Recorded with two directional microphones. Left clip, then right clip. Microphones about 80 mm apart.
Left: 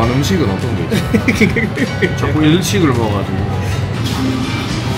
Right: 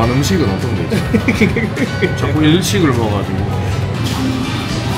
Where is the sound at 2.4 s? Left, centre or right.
Centre.